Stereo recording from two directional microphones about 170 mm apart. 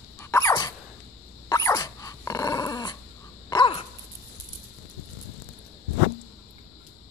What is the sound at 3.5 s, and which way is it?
Crow, 30° left (ahead or behind).